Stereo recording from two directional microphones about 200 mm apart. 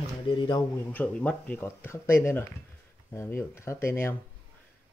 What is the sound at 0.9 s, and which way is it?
Speech, 10° left (ahead or behind).